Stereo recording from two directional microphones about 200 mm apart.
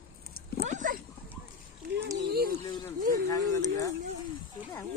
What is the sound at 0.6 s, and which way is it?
Dog, 40° right (ahead or behind).